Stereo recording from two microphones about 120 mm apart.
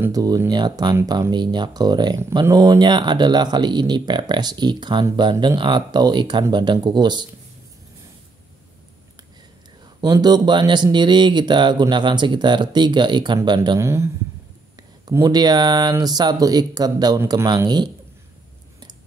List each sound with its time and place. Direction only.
0.1 s speech: 30° right (ahead or behind)
9.9 s speech: 35° right (ahead or behind)
13.7 s speech: 25° right (ahead or behind)
15.2 s speech: 35° right (ahead or behind)